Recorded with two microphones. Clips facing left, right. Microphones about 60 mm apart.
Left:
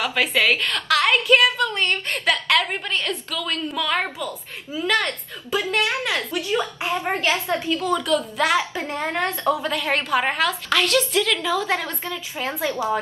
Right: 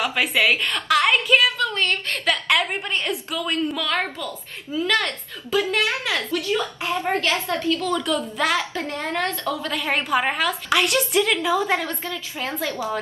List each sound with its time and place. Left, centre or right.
0.0 s a woman's voice: centre
2.3 s a woman's voice: centre
3.6 s a woman's voice: centre
6.1 s a woman's voice: left
7.9 s a woman's voice: centre
8.5 s a woman's voice: centre
9.7 s a woman's voice: centre
10.8 s a woman's voice: centre
12.1 s a woman's voice: centre
12.7 s a woman's voice: left